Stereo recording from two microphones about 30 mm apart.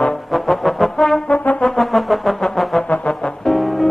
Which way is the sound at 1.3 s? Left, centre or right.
Left.